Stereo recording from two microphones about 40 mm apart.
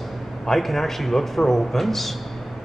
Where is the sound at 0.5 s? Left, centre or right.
Centre.